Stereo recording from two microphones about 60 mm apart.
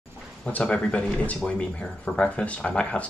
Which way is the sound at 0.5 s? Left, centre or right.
Left.